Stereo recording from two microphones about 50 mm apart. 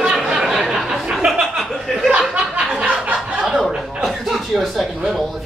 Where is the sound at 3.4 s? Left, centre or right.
Centre.